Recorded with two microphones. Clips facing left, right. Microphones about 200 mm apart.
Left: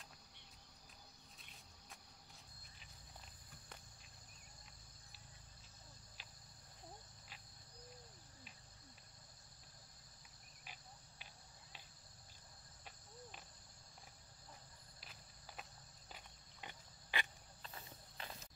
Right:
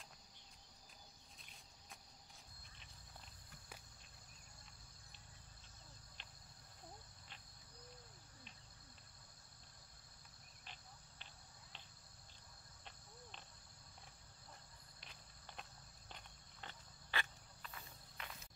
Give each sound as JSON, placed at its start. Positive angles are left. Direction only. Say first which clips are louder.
{"t": 6.2, "sound": "cricket", "louder": "even", "side_deg": 5}
{"t": 10.6, "sound": "cricket", "louder": "left 1 dB", "side_deg": 10}
{"t": 15.0, "sound": "walk", "louder": "even", "side_deg": 5}
{"t": 17.1, "sound": "cricket", "louder": "even", "side_deg": 15}
{"t": 17.6, "sound": "a sound", "louder": "left 1 dB", "side_deg": 30}